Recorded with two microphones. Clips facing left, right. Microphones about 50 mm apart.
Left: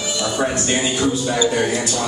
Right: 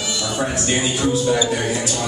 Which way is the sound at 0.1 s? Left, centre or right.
Centre.